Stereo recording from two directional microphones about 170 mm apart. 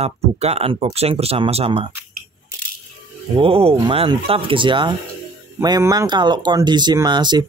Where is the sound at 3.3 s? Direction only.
35° right (ahead or behind).